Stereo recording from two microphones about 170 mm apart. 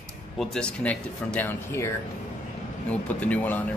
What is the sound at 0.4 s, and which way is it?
Speech, 5° left (ahead or behind).